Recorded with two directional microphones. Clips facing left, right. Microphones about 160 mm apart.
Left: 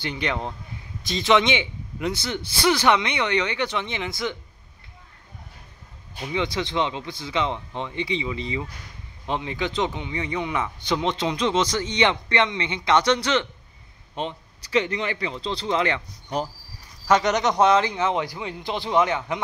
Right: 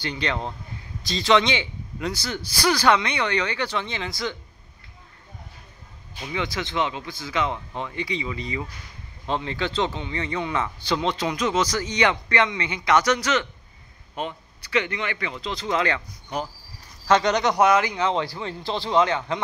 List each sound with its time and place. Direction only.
0.0 s a man's voice: 20° left (ahead or behind)
6.3 s a man's voice: 30° left (ahead or behind)
17.1 s speech: 20° left (ahead or behind)